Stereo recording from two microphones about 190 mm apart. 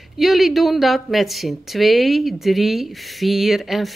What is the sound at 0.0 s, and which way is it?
Speech, centre (ahead or behind).